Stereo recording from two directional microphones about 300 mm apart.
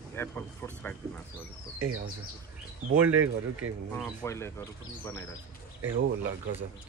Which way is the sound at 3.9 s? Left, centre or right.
Centre.